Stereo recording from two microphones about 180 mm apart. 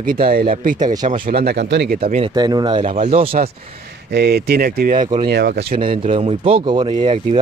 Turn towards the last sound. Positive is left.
turn(degrees=-30)  # may be behind; listen again after turning